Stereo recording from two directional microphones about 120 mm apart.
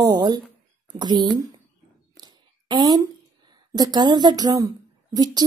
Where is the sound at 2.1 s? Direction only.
35° right (ahead or behind).